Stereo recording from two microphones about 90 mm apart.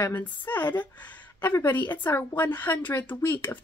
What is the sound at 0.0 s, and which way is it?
Speech, 20° left (ahead or behind).